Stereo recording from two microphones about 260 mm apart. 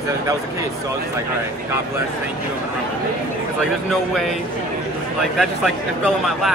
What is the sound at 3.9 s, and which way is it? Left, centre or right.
Speech, centre.